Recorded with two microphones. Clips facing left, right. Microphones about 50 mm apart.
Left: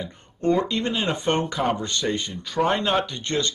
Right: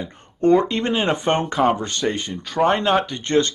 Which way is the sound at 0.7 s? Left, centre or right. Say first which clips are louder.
Right 4 dB; right.